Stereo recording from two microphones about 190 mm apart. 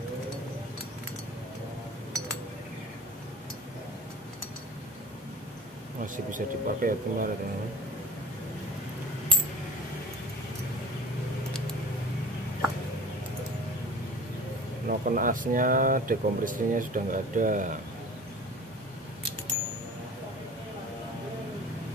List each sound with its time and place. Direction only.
6.3 s speech: 45° right (ahead or behind)
14.9 s speech: 45° right (ahead or behind)